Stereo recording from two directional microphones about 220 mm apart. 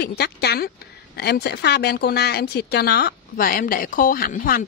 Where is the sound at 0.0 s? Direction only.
45° left (ahead or behind).